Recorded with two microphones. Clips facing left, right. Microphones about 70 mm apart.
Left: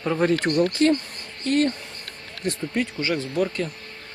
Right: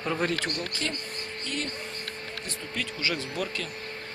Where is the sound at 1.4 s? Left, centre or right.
Left.